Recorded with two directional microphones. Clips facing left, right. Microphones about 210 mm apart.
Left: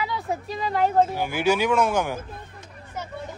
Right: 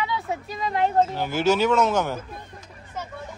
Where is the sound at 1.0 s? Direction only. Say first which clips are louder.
Even; 10° left (ahead or behind).